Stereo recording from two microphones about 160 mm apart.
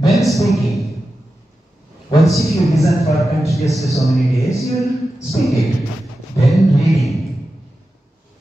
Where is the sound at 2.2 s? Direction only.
Centre (ahead or behind).